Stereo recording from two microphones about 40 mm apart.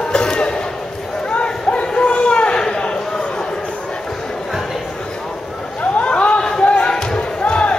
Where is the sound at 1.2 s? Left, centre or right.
Left.